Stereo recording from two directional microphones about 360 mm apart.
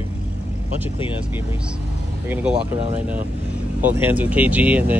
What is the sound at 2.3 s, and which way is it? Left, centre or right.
Speech, centre.